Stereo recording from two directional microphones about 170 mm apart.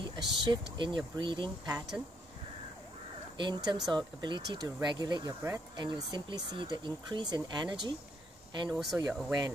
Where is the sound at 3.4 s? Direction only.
25° right (ahead or behind).